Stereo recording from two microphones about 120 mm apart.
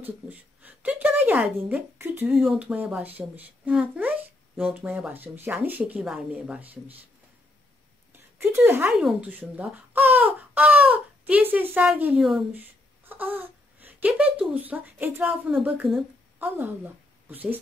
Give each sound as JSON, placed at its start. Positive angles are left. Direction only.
{"t": 0.0, "sound": "speech", "side_deg": -15}
{"t": 2.3, "sound": "speech", "side_deg": 0}
{"t": 2.6, "sound": "speech", "side_deg": -10}
{"t": 8.1, "sound": "a sound", "side_deg": -20}
{"t": 8.9, "sound": "speech", "side_deg": -10}
{"t": 12.2, "sound": "speech", "side_deg": -5}
{"t": 12.5, "sound": "a woman's voice", "side_deg": -15}